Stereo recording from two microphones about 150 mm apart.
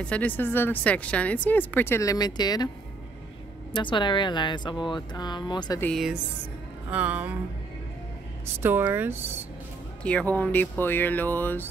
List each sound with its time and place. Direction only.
0.0 s speech: 10° left (ahead or behind); by 2.7 s 25° left (ahead or behind)
3.7 s speech: 30° left (ahead or behind)
6.9 s speech: 10° right (ahead or behind)
8.6 s speech: 15° right (ahead or behind)
10.0 s speech: 10° left (ahead or behind)